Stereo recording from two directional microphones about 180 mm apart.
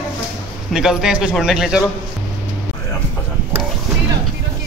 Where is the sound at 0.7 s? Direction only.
5° right (ahead or behind).